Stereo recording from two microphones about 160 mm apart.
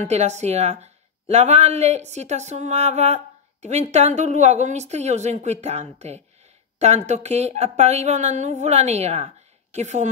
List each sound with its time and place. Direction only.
0.0 s speech: 45° right (ahead or behind)